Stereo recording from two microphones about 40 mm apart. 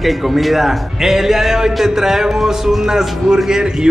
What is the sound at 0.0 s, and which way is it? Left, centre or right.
A man's voice, centre.